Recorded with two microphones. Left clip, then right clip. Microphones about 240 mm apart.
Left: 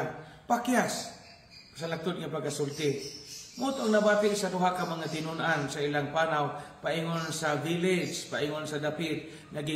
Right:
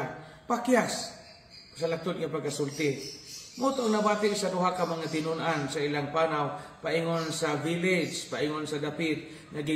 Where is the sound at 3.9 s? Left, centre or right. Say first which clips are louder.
Left 2 dB; centre.